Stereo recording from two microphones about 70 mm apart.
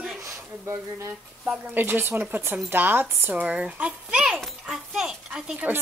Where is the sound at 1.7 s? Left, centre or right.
Right.